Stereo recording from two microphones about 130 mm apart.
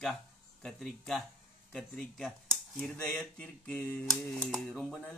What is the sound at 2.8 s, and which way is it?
Speech, 5° left (ahead or behind).